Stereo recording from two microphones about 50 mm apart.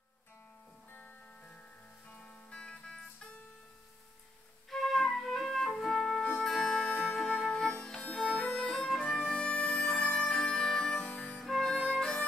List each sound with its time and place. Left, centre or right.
2.0 s music: left
4.6 s flute: centre
5.8 s music: centre
8.5 s music: centre
10.5 s harmonica: centre
11.4 s harmonica: centre
11.7 s music: centre